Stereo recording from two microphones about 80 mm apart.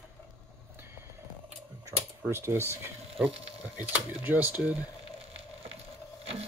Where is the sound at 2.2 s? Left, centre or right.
Right.